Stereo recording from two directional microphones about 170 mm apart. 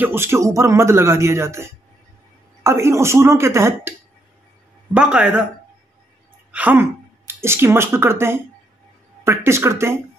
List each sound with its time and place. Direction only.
0.0 s speech: 15° right (ahead or behind)
4.9 s speech: 5° right (ahead or behind)
6.5 s speech: 10° right (ahead or behind)